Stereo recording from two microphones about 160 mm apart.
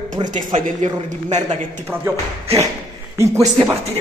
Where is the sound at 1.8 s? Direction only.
15° right (ahead or behind).